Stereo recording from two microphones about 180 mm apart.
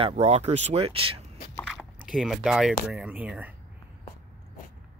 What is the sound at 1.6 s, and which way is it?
Speech, centre (ahead or behind).